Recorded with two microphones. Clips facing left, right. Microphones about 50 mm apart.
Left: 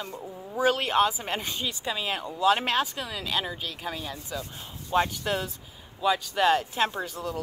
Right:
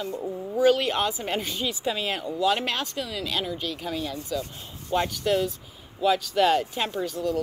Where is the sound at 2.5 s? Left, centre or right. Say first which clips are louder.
Left 6 dB; centre.